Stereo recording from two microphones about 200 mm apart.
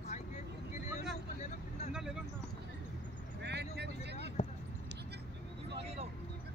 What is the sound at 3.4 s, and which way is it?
Vehicle, 60° right (ahead or behind).